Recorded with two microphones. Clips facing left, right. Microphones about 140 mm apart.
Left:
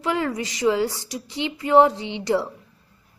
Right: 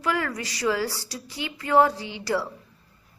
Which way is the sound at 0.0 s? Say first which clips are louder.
Left 3 dB; 20° left (ahead or behind).